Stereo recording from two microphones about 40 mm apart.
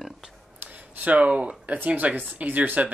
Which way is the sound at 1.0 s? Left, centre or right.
Right.